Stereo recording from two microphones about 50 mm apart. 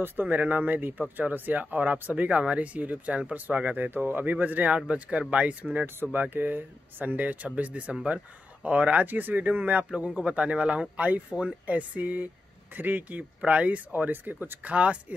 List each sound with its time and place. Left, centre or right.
0.0 s speech: right
6.2 s speech: right
9.8 s speech: centre; by 13.2 s right
13.5 s speech: right